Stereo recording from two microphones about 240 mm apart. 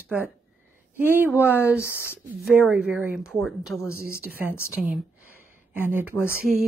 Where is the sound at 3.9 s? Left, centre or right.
Right.